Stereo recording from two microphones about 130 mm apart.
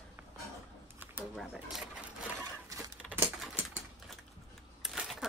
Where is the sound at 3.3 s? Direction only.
Centre (ahead or behind).